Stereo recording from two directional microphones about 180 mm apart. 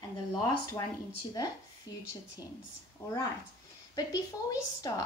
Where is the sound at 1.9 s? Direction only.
20° left (ahead or behind).